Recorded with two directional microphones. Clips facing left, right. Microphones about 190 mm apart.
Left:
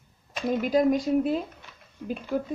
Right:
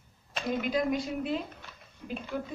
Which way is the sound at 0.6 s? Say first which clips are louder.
Left 7 dB; 40° left (ahead or behind).